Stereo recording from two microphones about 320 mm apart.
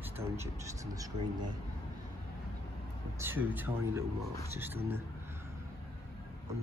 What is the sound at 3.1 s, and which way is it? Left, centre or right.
Speech, centre.